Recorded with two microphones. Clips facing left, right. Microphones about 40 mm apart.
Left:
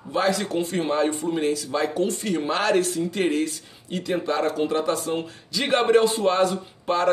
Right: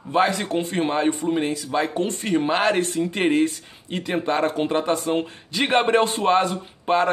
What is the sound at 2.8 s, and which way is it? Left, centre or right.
Speech, right.